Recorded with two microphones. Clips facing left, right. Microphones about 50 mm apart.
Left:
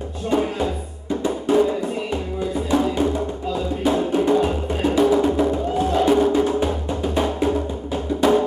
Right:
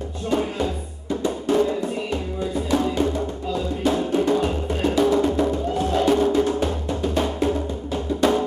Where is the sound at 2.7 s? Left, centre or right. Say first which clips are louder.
Left 2 dB; centre.